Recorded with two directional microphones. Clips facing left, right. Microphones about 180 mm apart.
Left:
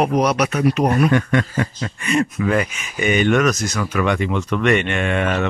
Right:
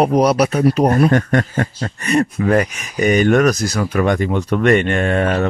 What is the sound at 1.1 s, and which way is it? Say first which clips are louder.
Speech: right 2 dB; 45° right (ahead or behind).